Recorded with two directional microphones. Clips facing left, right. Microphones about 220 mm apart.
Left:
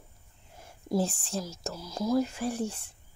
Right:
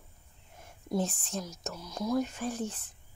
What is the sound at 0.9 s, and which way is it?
Speech, 30° left (ahead or behind).